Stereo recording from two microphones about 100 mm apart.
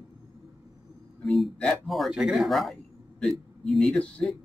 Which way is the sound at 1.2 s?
Centre (ahead or behind).